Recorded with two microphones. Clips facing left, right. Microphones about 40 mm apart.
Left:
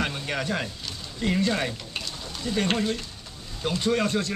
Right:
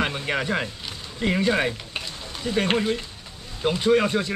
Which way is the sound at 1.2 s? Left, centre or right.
Right.